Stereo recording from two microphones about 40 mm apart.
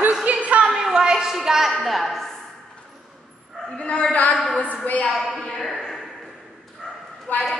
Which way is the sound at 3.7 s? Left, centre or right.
Left.